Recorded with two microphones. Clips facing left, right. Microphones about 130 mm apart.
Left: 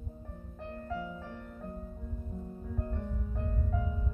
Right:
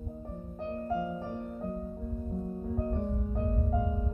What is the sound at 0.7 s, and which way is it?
Music, 30° right (ahead or behind).